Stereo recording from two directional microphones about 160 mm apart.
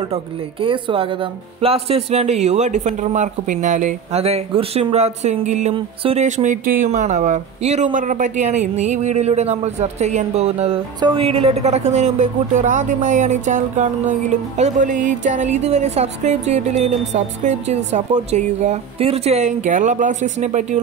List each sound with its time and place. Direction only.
0.1 s speech: 35° right (ahead or behind); by 20.8 s 50° right (ahead or behind)